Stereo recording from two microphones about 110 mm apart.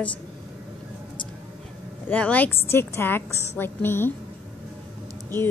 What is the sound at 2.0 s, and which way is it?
A woman's voice, 15° left (ahead or behind).